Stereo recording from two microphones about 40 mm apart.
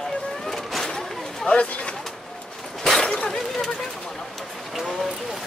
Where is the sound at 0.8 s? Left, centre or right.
Centre.